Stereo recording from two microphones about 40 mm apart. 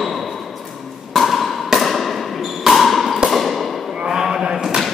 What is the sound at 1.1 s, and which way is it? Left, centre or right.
Wood block, centre.